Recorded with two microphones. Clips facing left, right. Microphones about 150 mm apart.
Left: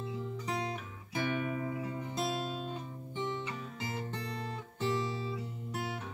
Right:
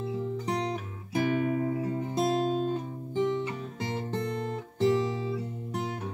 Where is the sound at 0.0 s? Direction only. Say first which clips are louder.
Right 7 dB; 35° right (ahead or behind).